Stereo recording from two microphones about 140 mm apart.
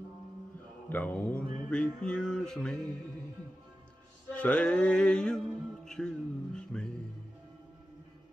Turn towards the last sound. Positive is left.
turn(degrees=5)  # may be behind; listen again after turning